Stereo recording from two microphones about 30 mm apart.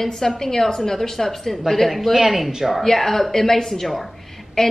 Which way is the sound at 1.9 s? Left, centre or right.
Centre.